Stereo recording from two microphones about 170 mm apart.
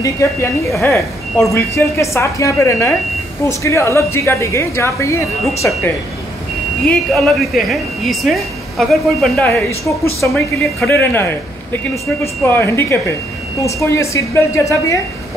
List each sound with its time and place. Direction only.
0.0 s speech: 15° left (ahead or behind)
6.9 s a woman's voice: centre (ahead or behind)
9.8 s speech: 15° left (ahead or behind)
12.4 s speech: 15° left (ahead or behind)